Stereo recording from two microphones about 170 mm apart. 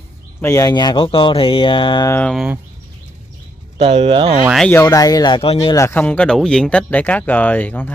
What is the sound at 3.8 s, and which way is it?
Speech, 35° right (ahead or behind).